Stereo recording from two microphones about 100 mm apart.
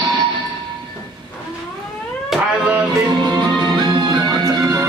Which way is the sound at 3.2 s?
50° right (ahead or behind).